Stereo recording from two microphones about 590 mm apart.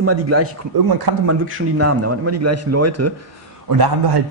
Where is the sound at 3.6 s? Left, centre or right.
Right.